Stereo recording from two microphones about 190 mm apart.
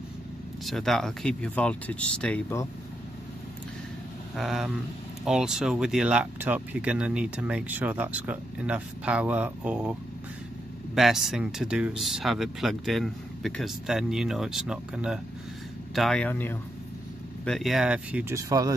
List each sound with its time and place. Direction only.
0.7 s speech: centre (ahead or behind)
4.4 s speech: centre (ahead or behind)
11.0 s speech: centre (ahead or behind)
18.5 s speech: 20° right (ahead or behind)